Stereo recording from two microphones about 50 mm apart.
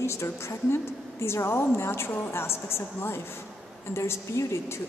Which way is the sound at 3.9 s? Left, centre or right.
Left.